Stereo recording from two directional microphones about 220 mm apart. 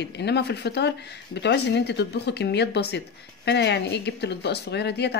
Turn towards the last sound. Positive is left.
turn(degrees=50)  # may be behind; listen again after turning